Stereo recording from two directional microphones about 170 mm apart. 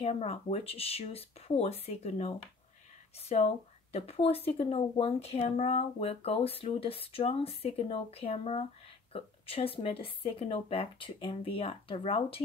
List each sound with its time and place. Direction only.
0.0 s speech: 35° left (ahead or behind)